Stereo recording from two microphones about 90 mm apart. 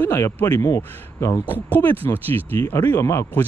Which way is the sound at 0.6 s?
40° left (ahead or behind).